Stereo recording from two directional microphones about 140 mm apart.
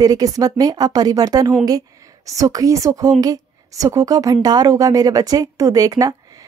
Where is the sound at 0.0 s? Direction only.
25° right (ahead or behind).